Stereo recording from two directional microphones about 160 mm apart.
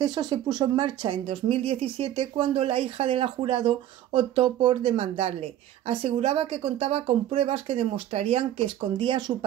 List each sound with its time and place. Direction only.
0.0 s speech: 25° right (ahead or behind)